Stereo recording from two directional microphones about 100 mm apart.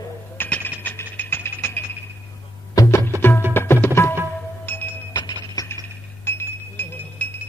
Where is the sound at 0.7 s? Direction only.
20° left (ahead or behind).